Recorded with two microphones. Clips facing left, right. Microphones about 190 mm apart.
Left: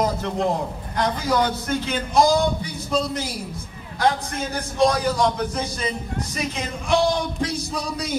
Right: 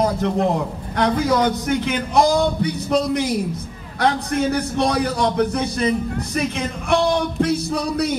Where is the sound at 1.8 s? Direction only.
65° right (ahead or behind).